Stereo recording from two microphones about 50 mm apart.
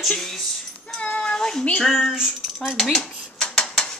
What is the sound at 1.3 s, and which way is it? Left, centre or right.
A woman's voice, centre.